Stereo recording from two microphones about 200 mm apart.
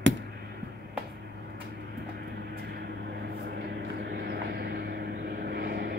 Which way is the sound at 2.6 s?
55° right (ahead or behind).